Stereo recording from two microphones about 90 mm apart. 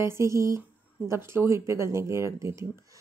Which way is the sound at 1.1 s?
30° right (ahead or behind).